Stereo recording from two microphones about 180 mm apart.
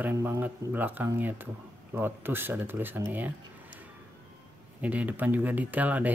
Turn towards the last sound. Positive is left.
turn(degrees=-10)  # may be behind; listen again after turning